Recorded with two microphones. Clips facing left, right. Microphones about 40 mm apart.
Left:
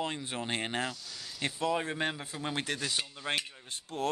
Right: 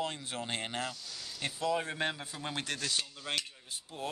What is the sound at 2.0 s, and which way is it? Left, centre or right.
Speech, centre.